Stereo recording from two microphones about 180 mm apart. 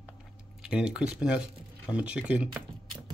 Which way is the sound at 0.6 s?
5° right (ahead or behind).